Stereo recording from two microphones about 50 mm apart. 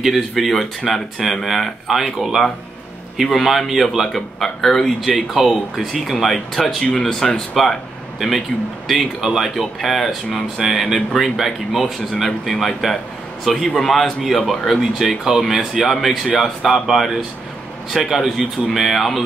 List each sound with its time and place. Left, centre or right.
0.0 s speech: centre
9.2 s speech: centre
9.6 s a man's voice: centre
14.8 s speech: centre